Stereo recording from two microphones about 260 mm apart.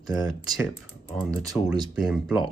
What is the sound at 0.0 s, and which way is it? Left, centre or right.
Speech, centre.